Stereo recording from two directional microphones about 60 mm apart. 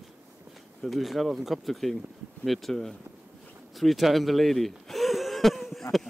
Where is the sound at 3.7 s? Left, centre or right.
Centre.